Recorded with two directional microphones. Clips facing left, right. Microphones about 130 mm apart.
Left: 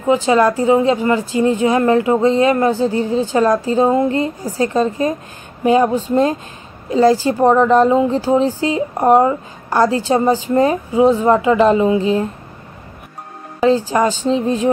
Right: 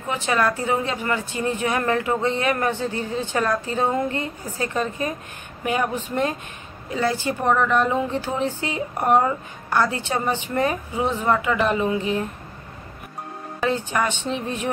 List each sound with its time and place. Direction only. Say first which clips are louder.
0.0 s speech: left 9 dB; 25° left (ahead or behind)
13.7 s speech: left 9 dB; 30° left (ahead or behind)